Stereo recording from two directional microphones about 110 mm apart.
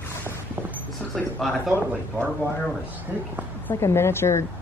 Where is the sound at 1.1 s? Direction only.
Centre (ahead or behind).